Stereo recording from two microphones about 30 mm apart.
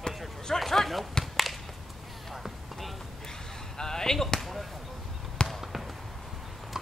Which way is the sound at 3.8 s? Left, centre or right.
Centre.